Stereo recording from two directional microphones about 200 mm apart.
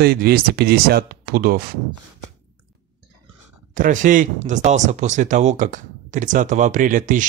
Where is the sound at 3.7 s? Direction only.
40° right (ahead or behind).